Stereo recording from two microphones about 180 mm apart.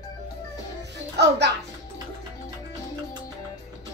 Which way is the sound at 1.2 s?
70° right (ahead or behind).